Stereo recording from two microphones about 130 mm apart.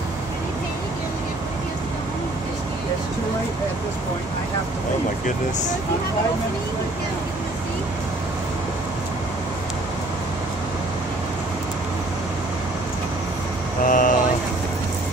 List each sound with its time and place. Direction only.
13.8 s vehicle: 90° left